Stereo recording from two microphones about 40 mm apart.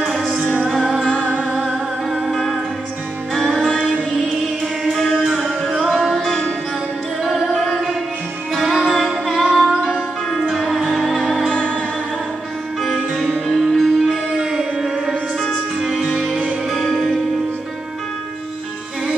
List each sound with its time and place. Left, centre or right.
2.3 s music: centre
4.8 s music: centre
9.0 s music: centre
9.4 s music: centre
11.5 s music: left
13.1 s music: centre
14.0 s music: centre
16.1 s music: centre